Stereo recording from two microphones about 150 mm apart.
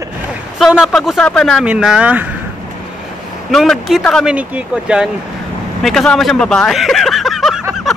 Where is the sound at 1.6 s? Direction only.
5° right (ahead or behind).